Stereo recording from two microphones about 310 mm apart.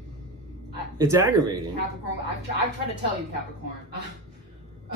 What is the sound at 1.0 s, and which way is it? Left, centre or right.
Speech, centre.